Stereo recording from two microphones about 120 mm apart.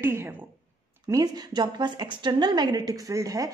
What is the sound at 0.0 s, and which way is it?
Speech, 20° right (ahead or behind).